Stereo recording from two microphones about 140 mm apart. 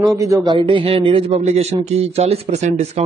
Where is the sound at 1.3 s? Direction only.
50° right (ahead or behind).